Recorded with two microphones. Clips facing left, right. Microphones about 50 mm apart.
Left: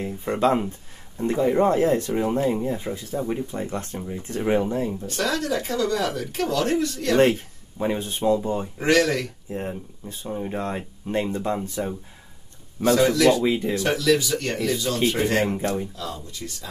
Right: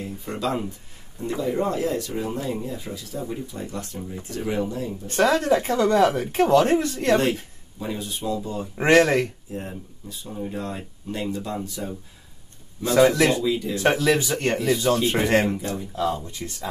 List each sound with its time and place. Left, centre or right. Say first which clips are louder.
0.0 s speech: left 6 dB; left
5.0 s speech: right 5 dB; right
7.8 s speech: left 6 dB; left
8.7 s speech: right 4 dB; right
9.5 s speech: left 3 dB; left
12.9 s speech: right 1 dB; right
13.4 s speech: left 2 dB; left
13.8 s speech: right 2 dB; right
15.6 s speech: left 4 dB; left
15.9 s speech: right 8 dB; right